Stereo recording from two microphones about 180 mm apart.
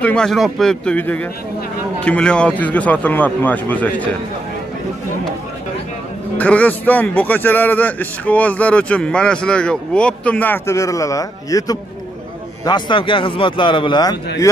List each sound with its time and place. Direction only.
0.0 s a man's voice: 5° left (ahead or behind)
6.3 s a man's voice: 10° left (ahead or behind); by 14.1 s 25° left (ahead or behind)